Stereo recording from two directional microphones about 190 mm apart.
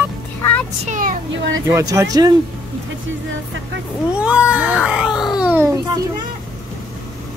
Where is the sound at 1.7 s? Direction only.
15° right (ahead or behind).